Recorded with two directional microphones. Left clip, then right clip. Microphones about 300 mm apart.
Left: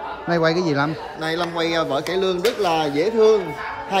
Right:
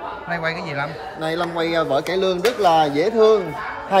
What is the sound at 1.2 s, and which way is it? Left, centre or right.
A man's voice, centre.